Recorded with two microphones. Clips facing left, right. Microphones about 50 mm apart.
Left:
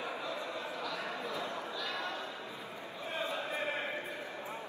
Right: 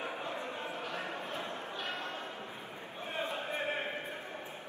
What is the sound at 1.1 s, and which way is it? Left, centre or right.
Bow-wow, right.